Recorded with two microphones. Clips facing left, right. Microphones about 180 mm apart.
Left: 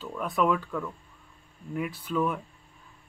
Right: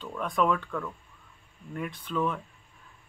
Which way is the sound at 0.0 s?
5° left (ahead or behind).